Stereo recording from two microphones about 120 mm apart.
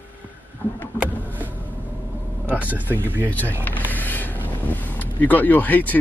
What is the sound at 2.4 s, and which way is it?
Speech, 15° right (ahead or behind).